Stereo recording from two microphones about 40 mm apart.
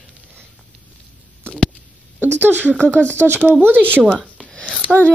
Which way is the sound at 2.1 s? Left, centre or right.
Right.